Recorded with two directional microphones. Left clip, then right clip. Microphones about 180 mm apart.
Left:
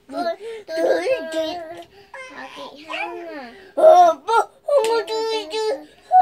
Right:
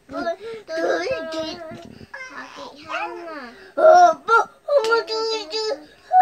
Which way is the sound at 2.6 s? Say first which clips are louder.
Left 1 dB; 10° right (ahead or behind).